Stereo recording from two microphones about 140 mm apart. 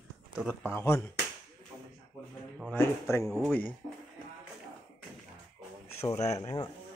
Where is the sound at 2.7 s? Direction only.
20° left (ahead or behind).